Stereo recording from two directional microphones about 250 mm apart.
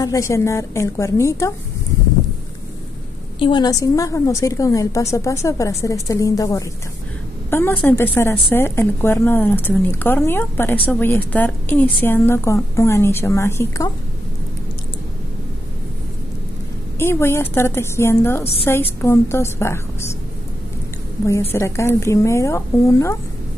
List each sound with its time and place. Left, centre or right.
0.0 s a woman's voice: centre
3.3 s a woman's voice: centre
17.0 s a woman's voice: centre
18.4 s a woman's voice: left
18.7 s a woman's voice: centre
21.3 s a woman's voice: centre